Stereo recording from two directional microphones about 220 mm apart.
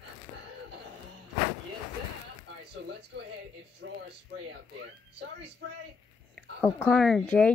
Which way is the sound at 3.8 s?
55° right (ahead or behind).